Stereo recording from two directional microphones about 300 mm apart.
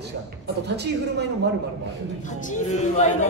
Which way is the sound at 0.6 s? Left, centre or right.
Right.